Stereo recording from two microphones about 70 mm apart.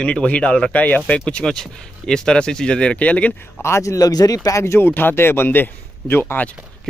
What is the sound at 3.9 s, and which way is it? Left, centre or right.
Speech, left.